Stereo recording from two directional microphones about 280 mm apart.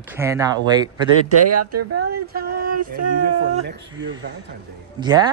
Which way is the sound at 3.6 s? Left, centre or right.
Right.